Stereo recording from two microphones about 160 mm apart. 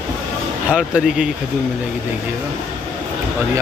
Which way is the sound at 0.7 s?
5° right (ahead or behind).